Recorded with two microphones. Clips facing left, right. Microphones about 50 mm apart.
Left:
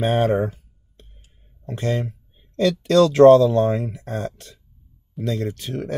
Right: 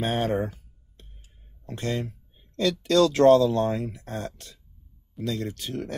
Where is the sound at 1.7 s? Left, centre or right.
Left.